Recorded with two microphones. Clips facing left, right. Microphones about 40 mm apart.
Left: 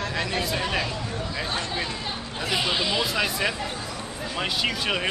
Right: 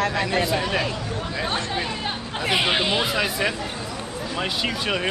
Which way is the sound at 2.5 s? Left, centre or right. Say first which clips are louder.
Right 4 dB; right.